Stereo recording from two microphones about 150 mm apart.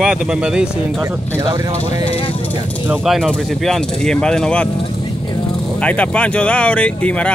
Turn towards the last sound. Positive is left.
turn(degrees=10)  # may be behind; listen again after turning